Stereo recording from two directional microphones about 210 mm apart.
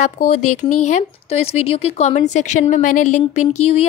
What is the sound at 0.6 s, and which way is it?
A woman's voice, 30° left (ahead or behind).